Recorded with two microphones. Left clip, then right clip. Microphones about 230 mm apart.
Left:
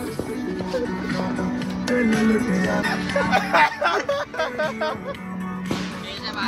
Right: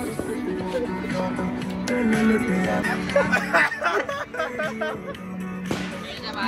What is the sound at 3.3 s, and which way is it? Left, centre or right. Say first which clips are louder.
Speech: left 2 dB; left.